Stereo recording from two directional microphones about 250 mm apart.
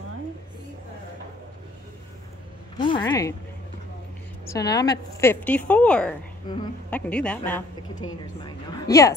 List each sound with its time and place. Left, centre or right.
2.8 s a woman's voice: centre
4.5 s a woman's voice: centre
6.4 s a woman's voice: centre
6.9 s a woman's voice: centre